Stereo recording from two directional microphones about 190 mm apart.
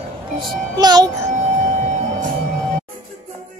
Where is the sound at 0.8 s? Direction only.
20° right (ahead or behind).